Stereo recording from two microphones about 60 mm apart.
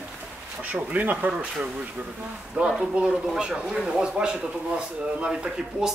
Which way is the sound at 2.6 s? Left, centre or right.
Right.